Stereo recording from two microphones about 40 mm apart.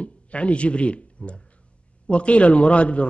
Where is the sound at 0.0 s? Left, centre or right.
Left.